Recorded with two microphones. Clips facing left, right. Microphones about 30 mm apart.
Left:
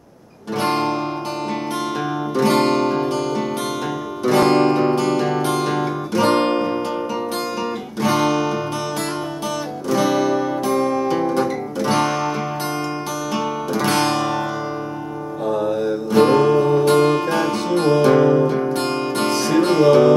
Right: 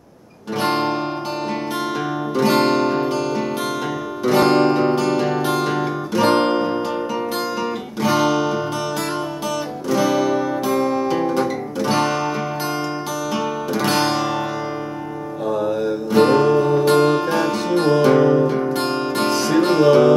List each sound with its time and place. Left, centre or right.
0.6 s music: centre
2.3 s music: centre
4.3 s guitar: centre
8.0 s music: centre
9.8 s music: centre
10.7 s music: right
11.3 s music: centre
13.7 s music: centre
15.5 s music: centre
16.5 s music: centre
16.8 s music: centre